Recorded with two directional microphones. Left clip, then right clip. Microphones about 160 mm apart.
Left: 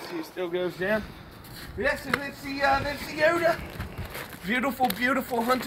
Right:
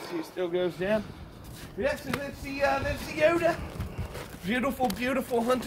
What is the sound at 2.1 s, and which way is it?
Speech, 30° right (ahead or behind).